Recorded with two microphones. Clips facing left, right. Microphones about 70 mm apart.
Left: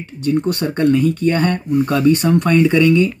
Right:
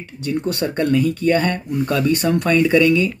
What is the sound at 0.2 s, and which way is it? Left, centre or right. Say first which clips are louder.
Speech: left 4 dB; left.